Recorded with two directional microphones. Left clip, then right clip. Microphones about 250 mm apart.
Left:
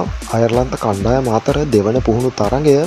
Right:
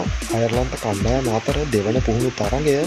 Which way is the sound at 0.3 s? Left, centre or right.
Left.